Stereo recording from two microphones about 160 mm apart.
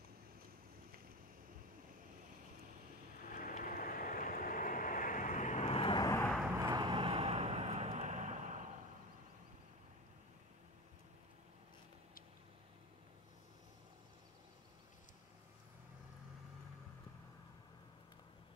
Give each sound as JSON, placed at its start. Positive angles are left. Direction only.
{"t": 3.3, "sound": "vehicle", "side_deg": 55}
{"t": 6.1, "sound": "vehicle", "side_deg": 5}
{"t": 6.6, "sound": "vehicle", "side_deg": -25}